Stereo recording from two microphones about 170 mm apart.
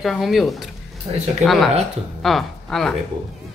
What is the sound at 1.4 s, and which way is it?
A woman's voice, centre (ahead or behind).